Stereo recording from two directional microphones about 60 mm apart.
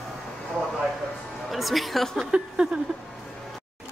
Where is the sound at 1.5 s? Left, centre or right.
Centre.